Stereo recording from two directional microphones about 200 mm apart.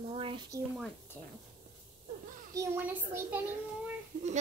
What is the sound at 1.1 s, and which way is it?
Speech, 5° left (ahead or behind).